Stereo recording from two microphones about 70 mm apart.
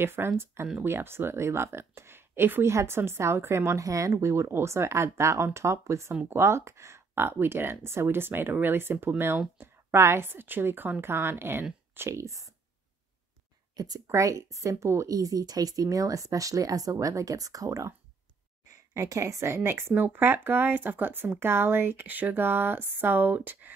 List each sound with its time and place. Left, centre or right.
0.0 s speech: right
13.7 s speech: right
14.0 s a woman's voice: right